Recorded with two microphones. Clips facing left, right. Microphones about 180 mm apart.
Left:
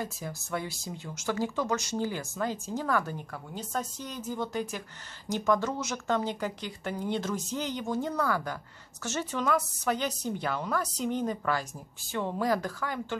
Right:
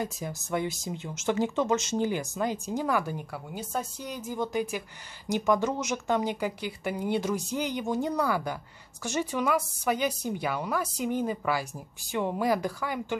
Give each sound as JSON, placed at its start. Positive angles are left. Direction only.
{"t": 0.0, "sound": "speech", "side_deg": -20}